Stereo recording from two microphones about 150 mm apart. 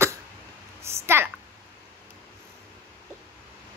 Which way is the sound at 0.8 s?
15° right (ahead or behind).